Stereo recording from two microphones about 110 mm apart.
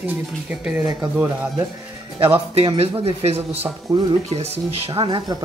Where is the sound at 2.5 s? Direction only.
65° right (ahead or behind).